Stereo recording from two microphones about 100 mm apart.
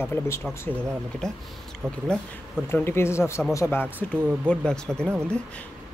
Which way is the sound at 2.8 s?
25° left (ahead or behind).